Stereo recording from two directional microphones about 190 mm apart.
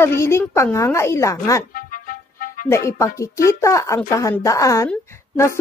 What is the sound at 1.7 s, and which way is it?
Music, 45° left (ahead or behind).